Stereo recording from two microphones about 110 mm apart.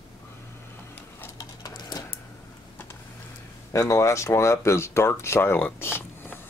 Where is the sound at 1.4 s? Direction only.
35° left (ahead or behind).